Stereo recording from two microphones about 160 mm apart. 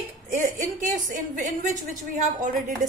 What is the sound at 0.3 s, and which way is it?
A woman's voice, 55° right (ahead or behind).